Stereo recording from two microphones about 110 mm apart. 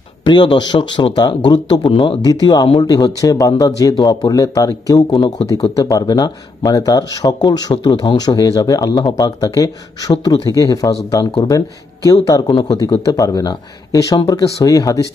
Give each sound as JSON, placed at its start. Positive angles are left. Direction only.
{"t": 0.2, "sound": "speech", "side_deg": 45}